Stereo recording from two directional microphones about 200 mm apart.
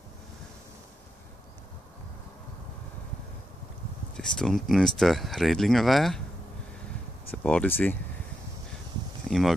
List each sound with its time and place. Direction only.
4.2 s speech: 5° left (ahead or behind)
7.2 s speech: 10° left (ahead or behind)
9.3 s a sound: 5° left (ahead or behind)